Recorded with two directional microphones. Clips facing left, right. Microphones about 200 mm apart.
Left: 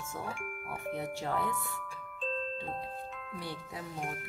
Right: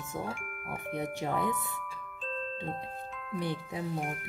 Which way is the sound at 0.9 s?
15° right (ahead or behind).